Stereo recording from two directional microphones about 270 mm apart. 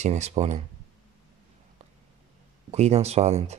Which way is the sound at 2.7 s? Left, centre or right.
Right.